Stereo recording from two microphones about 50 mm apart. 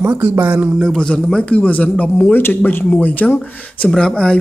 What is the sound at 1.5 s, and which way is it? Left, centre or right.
Speech, left.